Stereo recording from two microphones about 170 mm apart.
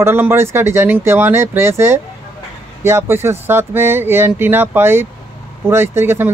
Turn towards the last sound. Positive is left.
turn(degrees=-15)  # may be behind; listen again after turning